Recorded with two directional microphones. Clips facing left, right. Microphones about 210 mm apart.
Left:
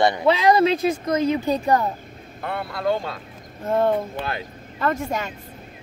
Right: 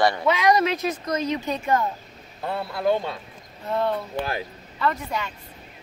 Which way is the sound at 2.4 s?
25° right (ahead or behind).